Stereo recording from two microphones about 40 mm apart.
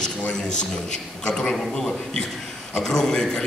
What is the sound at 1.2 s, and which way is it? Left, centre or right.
Speech, left.